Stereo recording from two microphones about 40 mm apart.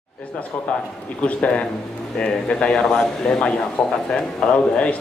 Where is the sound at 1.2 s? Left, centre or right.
Left.